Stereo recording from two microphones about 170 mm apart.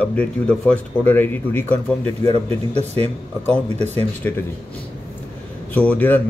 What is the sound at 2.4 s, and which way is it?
Speech, 35° right (ahead or behind).